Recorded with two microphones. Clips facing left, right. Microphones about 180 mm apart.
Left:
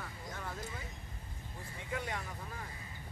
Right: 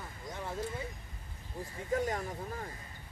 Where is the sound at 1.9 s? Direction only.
40° right (ahead or behind).